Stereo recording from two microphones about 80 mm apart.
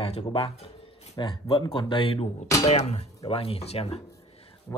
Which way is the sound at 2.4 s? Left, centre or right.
Left.